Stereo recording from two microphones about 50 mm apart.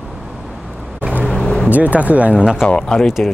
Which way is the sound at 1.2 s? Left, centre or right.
Centre.